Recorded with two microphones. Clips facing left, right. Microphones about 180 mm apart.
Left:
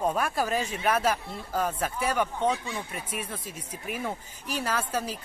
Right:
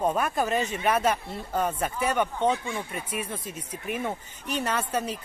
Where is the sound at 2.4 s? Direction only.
25° right (ahead or behind).